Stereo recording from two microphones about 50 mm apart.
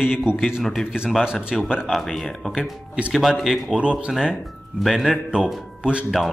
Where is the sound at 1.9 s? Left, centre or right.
Centre.